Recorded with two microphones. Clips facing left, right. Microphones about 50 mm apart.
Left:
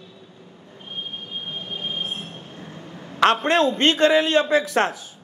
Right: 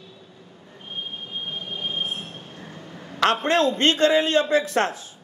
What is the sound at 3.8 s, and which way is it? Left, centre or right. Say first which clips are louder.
A man's voice: left 1 dB; left.